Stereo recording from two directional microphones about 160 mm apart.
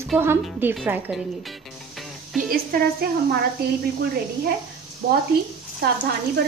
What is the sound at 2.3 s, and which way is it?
Speech, 60° right (ahead or behind).